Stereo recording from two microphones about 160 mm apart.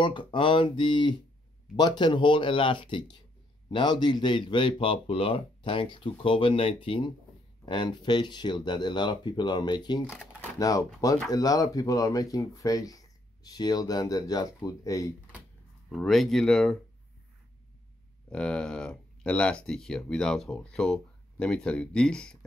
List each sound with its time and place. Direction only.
0.0 s speech: 30° left (ahead or behind)
15.9 s speech: centre (ahead or behind)
18.3 s speech: 5° left (ahead or behind)